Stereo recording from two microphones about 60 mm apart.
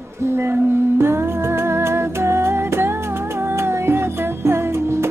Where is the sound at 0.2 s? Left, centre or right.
Right.